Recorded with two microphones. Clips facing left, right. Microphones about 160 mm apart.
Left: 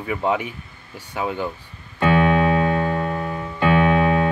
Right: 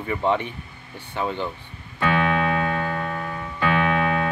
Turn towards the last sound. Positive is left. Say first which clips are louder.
# left 4 dB
turn(degrees=30)  # may be behind; listen again after turning